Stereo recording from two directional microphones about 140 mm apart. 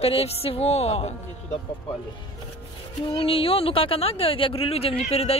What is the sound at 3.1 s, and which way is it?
Speech, 40° left (ahead or behind).